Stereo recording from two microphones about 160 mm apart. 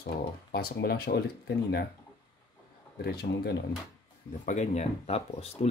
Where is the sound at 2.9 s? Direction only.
90° left.